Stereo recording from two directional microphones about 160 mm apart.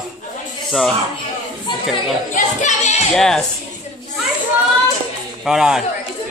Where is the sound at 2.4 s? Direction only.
50° left (ahead or behind).